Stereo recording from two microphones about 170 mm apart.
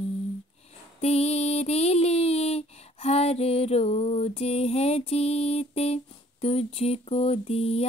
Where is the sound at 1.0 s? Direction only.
40° left (ahead or behind).